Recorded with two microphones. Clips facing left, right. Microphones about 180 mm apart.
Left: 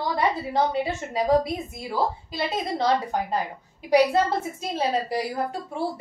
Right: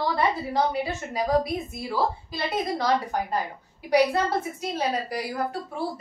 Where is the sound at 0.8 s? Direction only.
25° left (ahead or behind).